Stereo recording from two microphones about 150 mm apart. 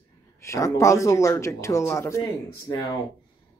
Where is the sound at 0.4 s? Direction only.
20° left (ahead or behind).